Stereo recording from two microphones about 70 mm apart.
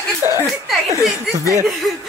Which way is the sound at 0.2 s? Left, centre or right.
Right.